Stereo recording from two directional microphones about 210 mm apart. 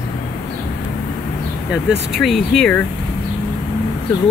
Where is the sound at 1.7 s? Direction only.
Centre (ahead or behind).